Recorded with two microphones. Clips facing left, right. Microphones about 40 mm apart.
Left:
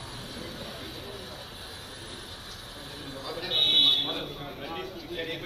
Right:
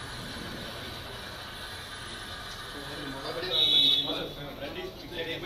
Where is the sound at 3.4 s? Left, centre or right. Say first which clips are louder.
Left 1 dB; left.